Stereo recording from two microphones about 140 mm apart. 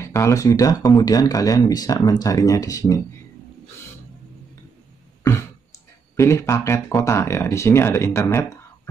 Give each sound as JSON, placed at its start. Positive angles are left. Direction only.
{"t": 0.0, "sound": "speech", "side_deg": 20}
{"t": 6.1, "sound": "speech", "side_deg": 20}